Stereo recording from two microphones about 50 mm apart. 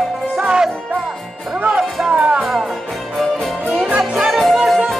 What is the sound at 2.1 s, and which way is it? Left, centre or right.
Music, right.